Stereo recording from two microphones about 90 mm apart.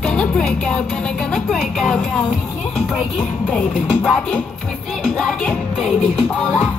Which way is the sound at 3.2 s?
10° left (ahead or behind).